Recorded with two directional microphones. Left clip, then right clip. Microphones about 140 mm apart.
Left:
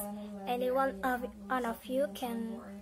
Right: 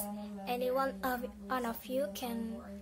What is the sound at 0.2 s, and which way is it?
A woman's voice, 5° right (ahead or behind).